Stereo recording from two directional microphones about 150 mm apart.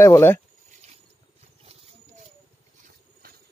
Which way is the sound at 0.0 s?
20° left (ahead or behind).